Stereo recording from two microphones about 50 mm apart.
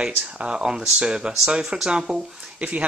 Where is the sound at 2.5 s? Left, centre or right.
Right.